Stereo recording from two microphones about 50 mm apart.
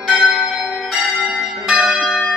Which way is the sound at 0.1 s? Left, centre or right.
Centre.